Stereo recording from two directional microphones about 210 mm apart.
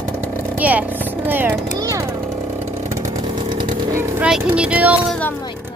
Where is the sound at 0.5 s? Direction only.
5° right (ahead or behind).